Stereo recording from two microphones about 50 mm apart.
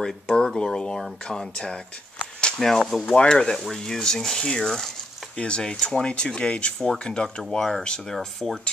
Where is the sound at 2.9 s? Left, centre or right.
Centre.